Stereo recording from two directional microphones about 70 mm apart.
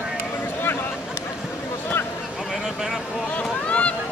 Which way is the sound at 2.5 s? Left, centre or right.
Centre.